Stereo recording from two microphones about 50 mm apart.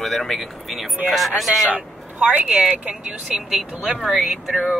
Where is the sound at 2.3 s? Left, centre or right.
Right.